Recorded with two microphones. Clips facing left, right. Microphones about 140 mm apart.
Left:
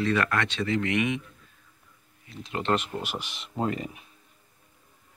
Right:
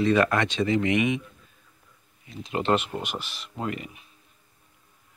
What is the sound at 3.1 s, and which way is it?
Speech, 20° left (ahead or behind).